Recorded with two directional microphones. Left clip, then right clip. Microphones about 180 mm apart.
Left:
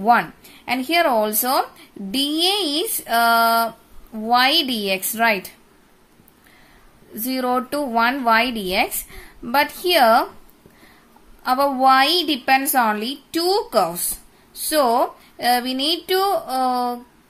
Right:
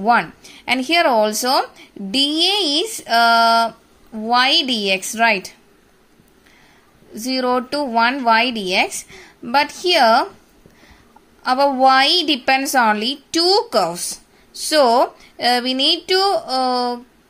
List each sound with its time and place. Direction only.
0.0 s speech: 10° right (ahead or behind)
7.2 s speech: 5° right (ahead or behind)
11.4 s speech: 10° right (ahead or behind)